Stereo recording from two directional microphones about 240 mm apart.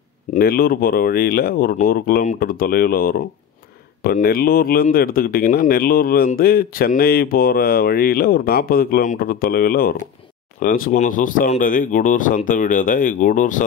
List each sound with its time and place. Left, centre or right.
0.3 s speech: left